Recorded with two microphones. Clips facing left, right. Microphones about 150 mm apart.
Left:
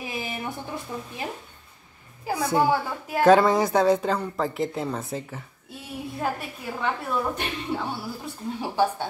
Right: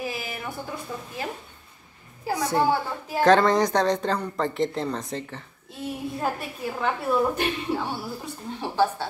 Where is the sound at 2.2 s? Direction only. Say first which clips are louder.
Even; 10° left (ahead or behind).